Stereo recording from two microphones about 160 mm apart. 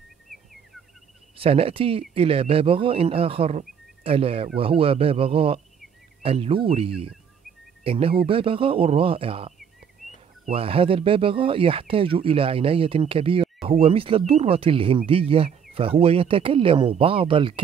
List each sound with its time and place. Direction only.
1.4 s speech: 35° right (ahead or behind)
10.5 s speech: 35° right (ahead or behind)